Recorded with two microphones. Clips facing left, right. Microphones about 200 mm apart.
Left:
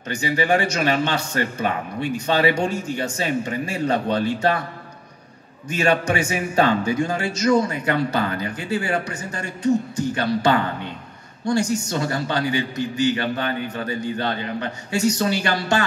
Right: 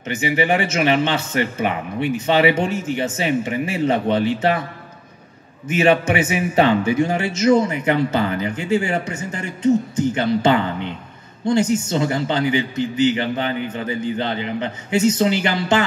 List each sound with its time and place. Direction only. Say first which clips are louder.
0.0 s a man's voice: right 3 dB; 20° right (ahead or behind)
5.7 s a man's voice: right 4 dB; 20° right (ahead or behind)